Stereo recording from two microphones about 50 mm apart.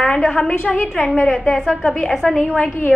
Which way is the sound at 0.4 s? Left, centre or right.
Left.